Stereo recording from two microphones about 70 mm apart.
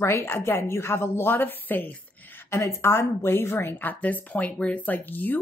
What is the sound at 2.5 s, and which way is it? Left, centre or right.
A woman's voice, left.